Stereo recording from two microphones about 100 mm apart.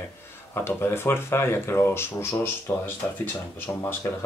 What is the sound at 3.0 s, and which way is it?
Speech, 10° left (ahead or behind).